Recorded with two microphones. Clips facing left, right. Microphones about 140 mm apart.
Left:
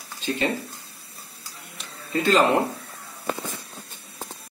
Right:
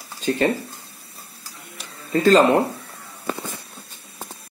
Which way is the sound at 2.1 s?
40° right (ahead or behind).